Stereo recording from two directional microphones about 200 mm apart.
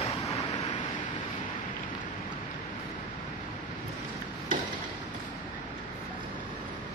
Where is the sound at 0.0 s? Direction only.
25° left (ahead or behind).